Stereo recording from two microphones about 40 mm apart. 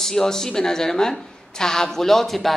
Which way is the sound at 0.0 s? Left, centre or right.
Centre.